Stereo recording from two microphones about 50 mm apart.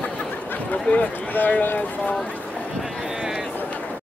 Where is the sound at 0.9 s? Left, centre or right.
Left.